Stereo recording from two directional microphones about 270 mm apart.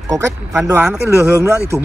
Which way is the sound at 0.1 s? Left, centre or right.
Centre.